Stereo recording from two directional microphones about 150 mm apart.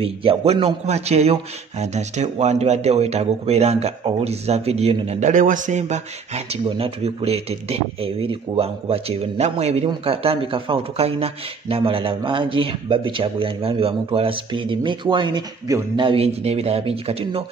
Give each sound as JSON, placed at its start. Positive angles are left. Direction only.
{"t": 0.0, "sound": "a man's voice", "side_deg": -40}
{"t": 5.3, "sound": "speech", "side_deg": -60}
{"t": 16.0, "sound": "speech", "side_deg": -40}